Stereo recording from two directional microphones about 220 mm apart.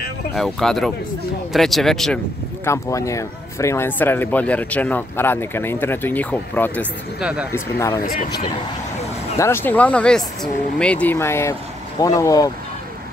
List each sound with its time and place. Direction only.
0.3 s speech: centre (ahead or behind)
2.6 s speech: 15° left (ahead or behind)
7.2 s speech: 5° right (ahead or behind)
7.5 s speech: 15° left (ahead or behind)
8.0 s speech: 40° left (ahead or behind)
9.4 s speech: 10° left (ahead or behind)